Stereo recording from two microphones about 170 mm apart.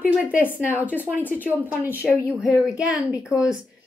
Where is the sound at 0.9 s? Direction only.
10° right (ahead or behind).